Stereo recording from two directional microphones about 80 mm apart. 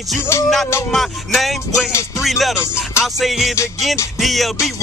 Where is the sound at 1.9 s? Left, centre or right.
Left.